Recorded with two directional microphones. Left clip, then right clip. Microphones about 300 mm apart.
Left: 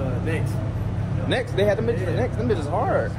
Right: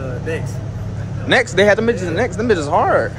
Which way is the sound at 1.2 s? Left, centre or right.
Right.